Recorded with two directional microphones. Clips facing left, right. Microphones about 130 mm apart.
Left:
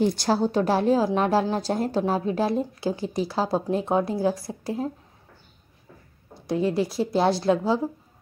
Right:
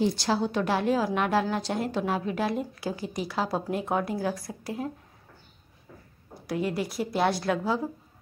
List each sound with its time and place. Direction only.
0.0 s a woman's voice: 45° left (ahead or behind); by 4.9 s 30° left (ahead or behind)
6.4 s a woman's voice: 25° left (ahead or behind)